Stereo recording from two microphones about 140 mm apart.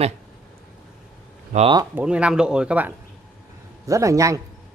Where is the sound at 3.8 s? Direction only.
25° right (ahead or behind).